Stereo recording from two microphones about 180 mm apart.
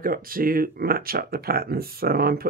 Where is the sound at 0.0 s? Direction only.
55° right (ahead or behind).